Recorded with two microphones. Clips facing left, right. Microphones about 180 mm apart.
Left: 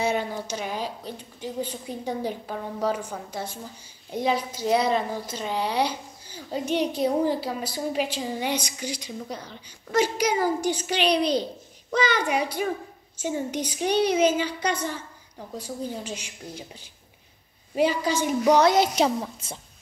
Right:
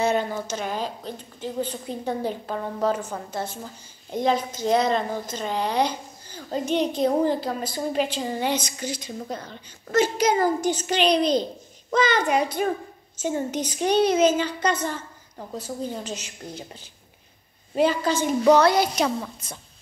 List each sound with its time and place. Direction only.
0.0 s a woman's voice: 10° left (ahead or behind)
17.7 s a woman's voice: 10° left (ahead or behind); by 19.6 s 25° left (ahead or behind)